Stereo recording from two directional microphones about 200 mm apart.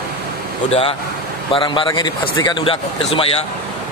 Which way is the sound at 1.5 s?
25° left (ahead or behind).